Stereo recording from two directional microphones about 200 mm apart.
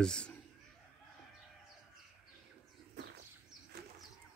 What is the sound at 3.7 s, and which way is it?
Bird, 55° right (ahead or behind).